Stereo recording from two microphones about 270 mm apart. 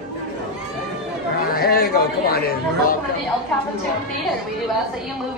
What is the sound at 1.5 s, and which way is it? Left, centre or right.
Speech, left.